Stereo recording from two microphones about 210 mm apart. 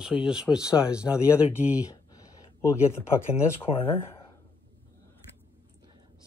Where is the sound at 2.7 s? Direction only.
10° left (ahead or behind).